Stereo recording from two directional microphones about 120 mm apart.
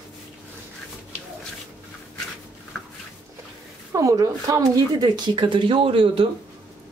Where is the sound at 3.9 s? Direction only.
30° right (ahead or behind); by 6.2 s 50° right (ahead or behind).